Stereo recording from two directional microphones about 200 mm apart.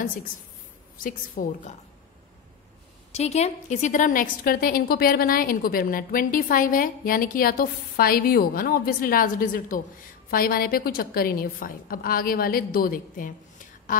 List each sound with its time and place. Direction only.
0.9 s a woman's voice: 45° left (ahead or behind)
3.1 s a woman's voice: 35° left (ahead or behind)